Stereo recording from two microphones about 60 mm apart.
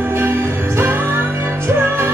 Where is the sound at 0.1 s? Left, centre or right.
Right.